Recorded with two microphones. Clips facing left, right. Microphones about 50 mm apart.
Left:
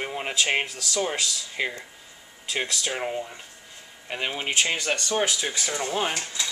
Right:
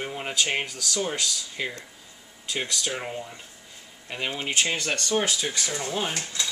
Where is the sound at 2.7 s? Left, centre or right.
Left.